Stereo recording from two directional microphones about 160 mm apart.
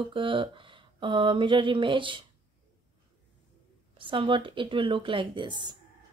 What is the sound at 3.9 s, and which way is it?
A woman's voice, 30° right (ahead or behind).